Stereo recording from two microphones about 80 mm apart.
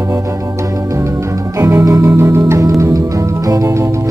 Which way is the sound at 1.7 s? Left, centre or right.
Right.